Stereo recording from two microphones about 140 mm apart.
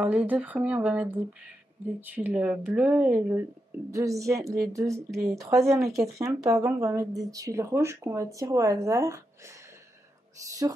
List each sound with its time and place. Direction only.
0.0 s speech: 10° right (ahead or behind)